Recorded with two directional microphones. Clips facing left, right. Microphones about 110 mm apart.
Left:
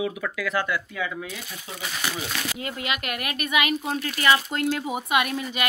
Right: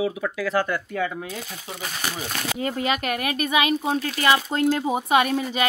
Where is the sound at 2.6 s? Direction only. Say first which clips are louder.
Right 10 dB; 35° right (ahead or behind).